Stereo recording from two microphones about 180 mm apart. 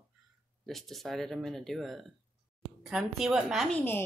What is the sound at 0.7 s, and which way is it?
A woman's voice, centre (ahead or behind).